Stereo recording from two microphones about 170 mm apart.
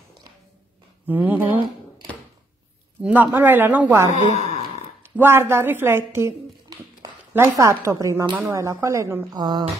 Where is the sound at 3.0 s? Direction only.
10° right (ahead or behind).